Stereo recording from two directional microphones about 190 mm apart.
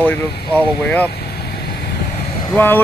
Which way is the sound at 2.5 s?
10° left (ahead or behind).